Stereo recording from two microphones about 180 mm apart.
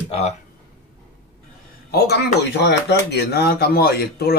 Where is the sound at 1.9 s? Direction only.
70° left (ahead or behind).